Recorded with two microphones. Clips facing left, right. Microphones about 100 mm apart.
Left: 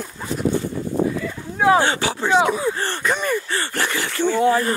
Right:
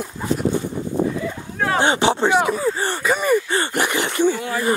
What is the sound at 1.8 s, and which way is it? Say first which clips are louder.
Speech: right 3 dB; 20° right (ahead or behind).